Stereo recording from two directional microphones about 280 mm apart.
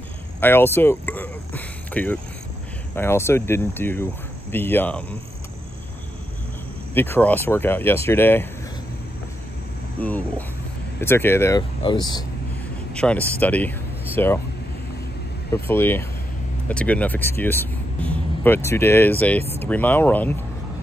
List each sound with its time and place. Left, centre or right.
0.4 s speech: centre
6.9 s speech: centre
9.9 s speech: centre
12.9 s speech: centre
15.5 s speech: centre
19.4 s speech: right
19.7 s speech: centre